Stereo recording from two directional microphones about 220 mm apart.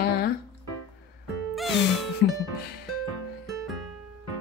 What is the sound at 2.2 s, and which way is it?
Music, 50° left (ahead or behind).